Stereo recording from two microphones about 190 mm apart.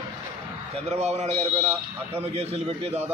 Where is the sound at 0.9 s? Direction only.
35° right (ahead or behind).